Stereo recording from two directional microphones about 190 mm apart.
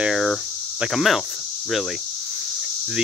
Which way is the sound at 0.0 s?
Centre (ahead or behind).